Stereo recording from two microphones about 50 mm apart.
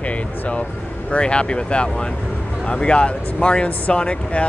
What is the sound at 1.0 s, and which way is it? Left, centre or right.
Speech, left.